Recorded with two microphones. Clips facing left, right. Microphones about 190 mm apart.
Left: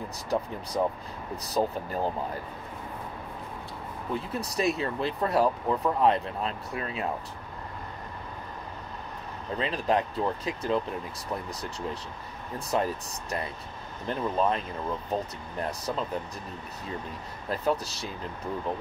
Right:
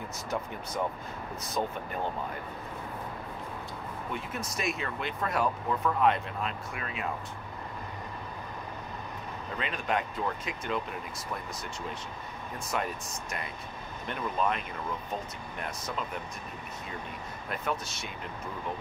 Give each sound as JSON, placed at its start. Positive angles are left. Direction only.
{"t": 0.3, "sound": "speech", "side_deg": 35}
{"t": 4.1, "sound": "speech", "side_deg": 35}
{"t": 9.6, "sound": "speech", "side_deg": 30}
{"t": 12.5, "sound": "speech", "side_deg": 35}
{"t": 17.5, "sound": "speech", "side_deg": 30}